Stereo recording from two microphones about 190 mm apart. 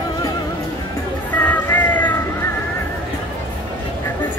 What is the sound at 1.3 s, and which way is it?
Music, 10° left (ahead or behind).